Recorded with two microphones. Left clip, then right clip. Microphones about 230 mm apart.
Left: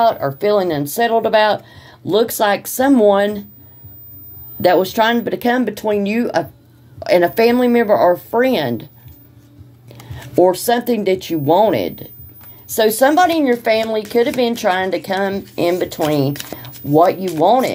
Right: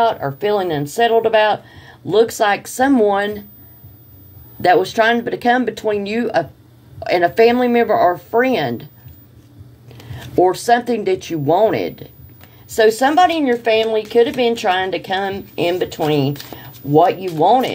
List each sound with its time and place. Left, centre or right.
0.2 s speech: left
4.6 s speech: left
10.3 s speech: left